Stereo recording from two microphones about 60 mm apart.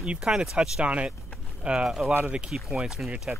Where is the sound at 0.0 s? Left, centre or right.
Centre.